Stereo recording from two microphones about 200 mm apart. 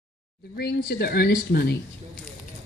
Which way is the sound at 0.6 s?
55° left (ahead or behind).